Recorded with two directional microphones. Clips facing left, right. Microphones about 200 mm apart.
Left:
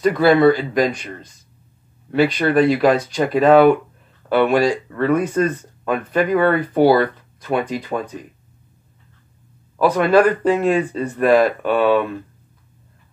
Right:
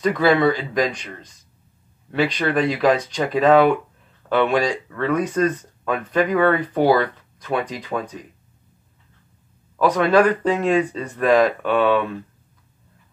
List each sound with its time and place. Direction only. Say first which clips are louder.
0.0 s speech: left 4 dB; 5° left (ahead or behind)
9.8 s speech: left 2 dB; 5° left (ahead or behind)